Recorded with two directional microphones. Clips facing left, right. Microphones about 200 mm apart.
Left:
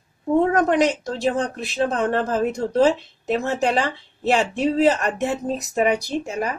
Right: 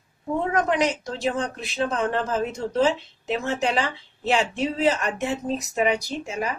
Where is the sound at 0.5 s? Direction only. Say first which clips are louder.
Left 4 dB; 40° left (ahead or behind).